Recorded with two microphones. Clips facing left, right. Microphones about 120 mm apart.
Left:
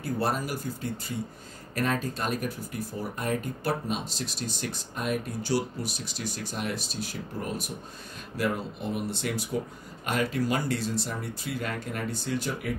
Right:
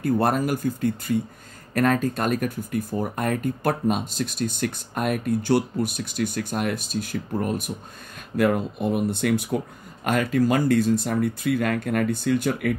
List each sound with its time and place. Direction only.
0.0 s speech: 55° right (ahead or behind)
1.7 s speech: 55° right (ahead or behind)